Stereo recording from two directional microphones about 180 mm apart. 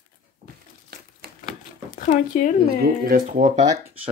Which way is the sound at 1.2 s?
55° right (ahead or behind).